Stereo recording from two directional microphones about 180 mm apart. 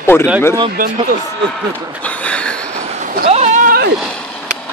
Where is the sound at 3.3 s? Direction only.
40° right (ahead or behind); by 3.9 s 55° right (ahead or behind).